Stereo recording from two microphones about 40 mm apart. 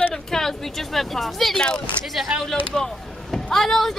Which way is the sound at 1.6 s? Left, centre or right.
Left.